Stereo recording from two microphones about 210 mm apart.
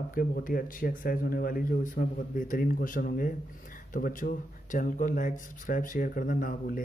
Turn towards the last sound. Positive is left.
turn(degrees=40)  # may be behind; listen again after turning